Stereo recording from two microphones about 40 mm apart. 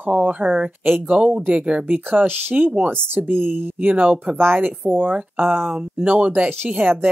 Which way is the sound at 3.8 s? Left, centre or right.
Right.